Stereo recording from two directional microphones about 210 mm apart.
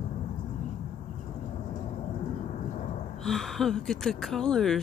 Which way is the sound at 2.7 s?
35° left (ahead or behind).